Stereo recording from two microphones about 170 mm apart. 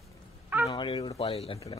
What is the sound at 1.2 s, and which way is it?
Speech, 35° left (ahead or behind).